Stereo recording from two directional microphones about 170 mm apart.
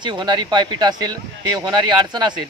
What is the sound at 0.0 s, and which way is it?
A man's voice, 25° right (ahead or behind).